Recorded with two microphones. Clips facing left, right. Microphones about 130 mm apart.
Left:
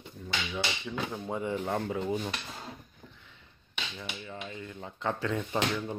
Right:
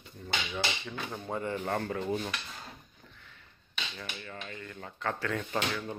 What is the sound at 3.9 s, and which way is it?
Speech, 15° left (ahead or behind).